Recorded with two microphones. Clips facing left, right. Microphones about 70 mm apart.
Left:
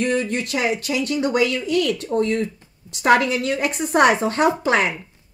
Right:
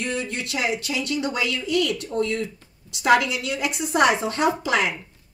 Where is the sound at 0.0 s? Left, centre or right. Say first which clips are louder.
Left 6 dB; left.